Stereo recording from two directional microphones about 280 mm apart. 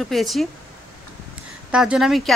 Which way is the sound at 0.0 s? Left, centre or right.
Centre.